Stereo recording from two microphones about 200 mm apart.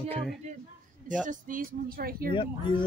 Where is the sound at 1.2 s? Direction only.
40° right (ahead or behind).